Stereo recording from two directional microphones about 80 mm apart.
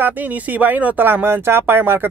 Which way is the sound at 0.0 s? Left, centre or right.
Right.